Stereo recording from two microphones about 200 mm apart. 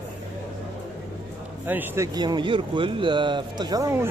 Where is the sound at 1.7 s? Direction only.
10° right (ahead or behind).